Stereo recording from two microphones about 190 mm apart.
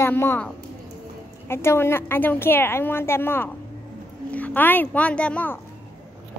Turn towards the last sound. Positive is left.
turn(degrees=5)  # may be behind; listen again after turning